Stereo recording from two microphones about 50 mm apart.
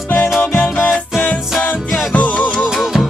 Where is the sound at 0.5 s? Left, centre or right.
Left.